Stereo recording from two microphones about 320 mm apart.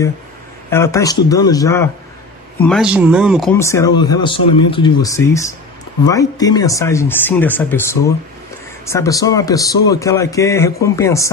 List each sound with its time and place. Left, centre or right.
0.7 s speech: centre